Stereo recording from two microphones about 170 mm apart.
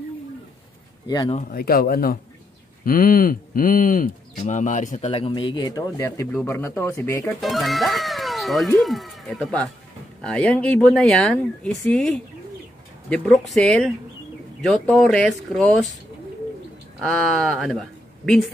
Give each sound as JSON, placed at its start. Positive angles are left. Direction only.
{"t": 1.0, "sound": "speech", "side_deg": 25}
{"t": 1.5, "sound": "speech", "side_deg": 60}
{"t": 7.3, "sound": "speech", "side_deg": 0}
{"t": 13.5, "sound": "speech", "side_deg": 5}
{"t": 17.2, "sound": "speech", "side_deg": 0}